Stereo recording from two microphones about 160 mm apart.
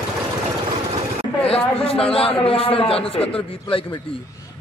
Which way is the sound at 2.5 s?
35° left (ahead or behind).